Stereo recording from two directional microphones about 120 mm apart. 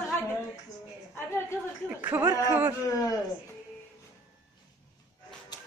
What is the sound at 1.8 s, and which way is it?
Speech, 15° right (ahead or behind).